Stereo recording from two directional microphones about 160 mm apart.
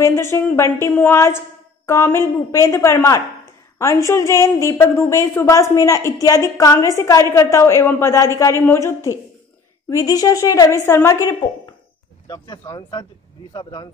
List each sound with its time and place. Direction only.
0.0 s a woman's voice: 15° left (ahead or behind)